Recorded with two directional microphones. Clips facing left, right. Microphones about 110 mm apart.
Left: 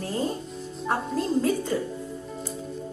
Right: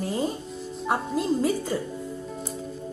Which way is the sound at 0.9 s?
10° right (ahead or behind).